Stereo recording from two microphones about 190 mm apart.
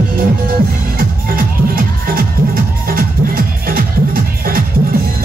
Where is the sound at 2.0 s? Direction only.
50° right (ahead or behind).